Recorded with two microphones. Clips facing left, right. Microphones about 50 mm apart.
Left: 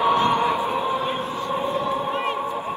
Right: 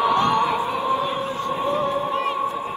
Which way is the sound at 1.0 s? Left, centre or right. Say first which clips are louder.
Right 1 dB; left.